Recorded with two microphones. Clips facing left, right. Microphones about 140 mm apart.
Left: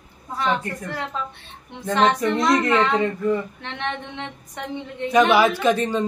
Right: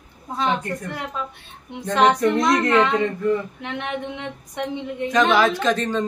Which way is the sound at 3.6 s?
10° right (ahead or behind).